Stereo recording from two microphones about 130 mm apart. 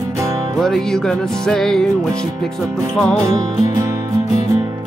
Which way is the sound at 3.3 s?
25° right (ahead or behind).